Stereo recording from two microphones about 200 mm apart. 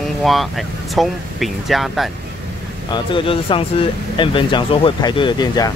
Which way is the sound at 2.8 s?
25° left (ahead or behind).